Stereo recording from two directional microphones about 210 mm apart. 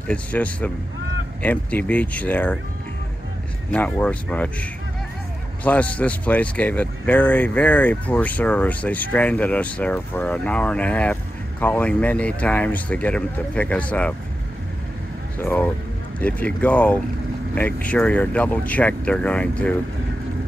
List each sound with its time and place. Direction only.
0.1 s speech: 5° left (ahead or behind)
3.7 s speech: 5° left (ahead or behind)
15.3 s speech: 10° left (ahead or behind)